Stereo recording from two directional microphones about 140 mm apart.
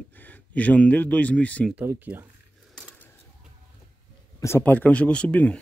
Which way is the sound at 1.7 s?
15° right (ahead or behind).